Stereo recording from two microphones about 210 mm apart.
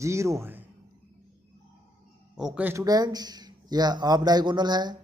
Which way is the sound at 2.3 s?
5° right (ahead or behind).